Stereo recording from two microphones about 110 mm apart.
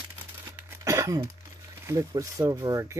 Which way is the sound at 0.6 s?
25° right (ahead or behind).